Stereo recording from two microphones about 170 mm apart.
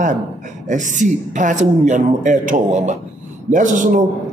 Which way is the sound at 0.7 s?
45° right (ahead or behind).